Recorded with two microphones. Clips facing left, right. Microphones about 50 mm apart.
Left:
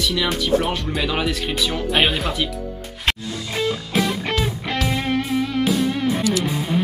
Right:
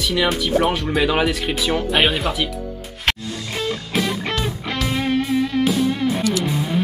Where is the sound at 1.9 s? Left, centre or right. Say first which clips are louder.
Left 1 dB; centre.